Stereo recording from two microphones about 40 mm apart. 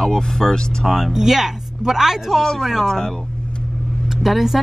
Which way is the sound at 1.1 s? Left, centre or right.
Centre.